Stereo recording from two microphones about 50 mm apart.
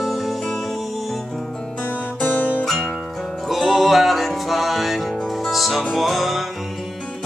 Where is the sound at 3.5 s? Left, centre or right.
Centre.